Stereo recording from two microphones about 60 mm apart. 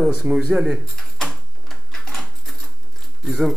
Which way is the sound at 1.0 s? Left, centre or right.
Centre.